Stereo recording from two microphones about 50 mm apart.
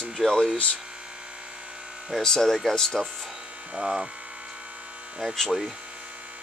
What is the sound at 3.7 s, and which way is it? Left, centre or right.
Speech, right.